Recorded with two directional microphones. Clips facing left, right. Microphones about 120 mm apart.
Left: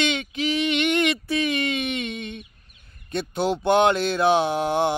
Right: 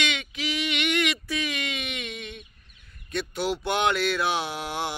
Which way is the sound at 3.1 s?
25° left (ahead or behind).